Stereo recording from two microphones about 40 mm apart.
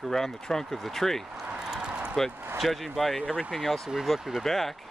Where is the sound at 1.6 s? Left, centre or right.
Centre.